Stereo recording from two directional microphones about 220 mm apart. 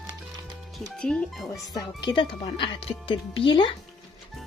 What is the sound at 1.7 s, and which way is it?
Speech, 20° left (ahead or behind).